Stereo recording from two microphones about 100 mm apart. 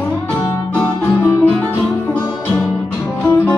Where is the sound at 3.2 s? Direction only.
20° left (ahead or behind).